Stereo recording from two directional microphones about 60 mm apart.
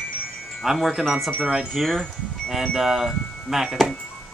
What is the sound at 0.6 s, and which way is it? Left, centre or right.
Speech, centre.